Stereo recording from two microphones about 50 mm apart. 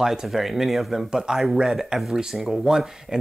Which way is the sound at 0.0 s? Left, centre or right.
Centre.